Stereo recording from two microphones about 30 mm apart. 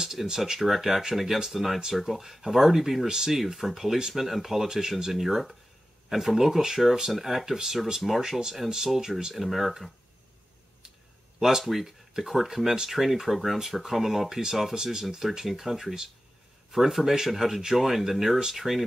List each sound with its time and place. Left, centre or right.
0.0 s a sound: centre
0.6 s speech: centre
5.1 s speech: centre
8.0 s speech: centre
8.6 s speech: centre
11.3 s speech: centre
11.8 s speech: centre